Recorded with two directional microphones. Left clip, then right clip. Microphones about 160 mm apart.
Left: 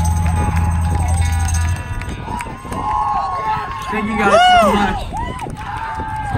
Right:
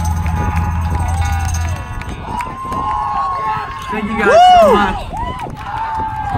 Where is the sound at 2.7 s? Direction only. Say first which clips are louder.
Left 1 dB; 5° left (ahead or behind).